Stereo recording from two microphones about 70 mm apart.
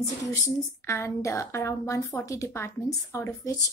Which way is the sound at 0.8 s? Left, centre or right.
Left.